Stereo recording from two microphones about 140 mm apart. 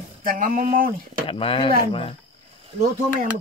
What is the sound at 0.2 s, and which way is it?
Speech, 90° right.